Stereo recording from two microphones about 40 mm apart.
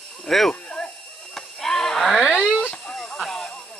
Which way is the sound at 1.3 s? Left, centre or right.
Centre.